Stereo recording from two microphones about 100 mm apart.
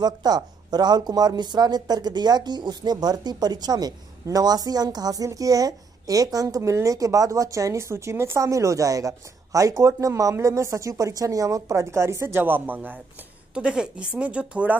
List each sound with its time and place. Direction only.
0.0 s speech: 40° right (ahead or behind); by 14.8 s 10° right (ahead or behind)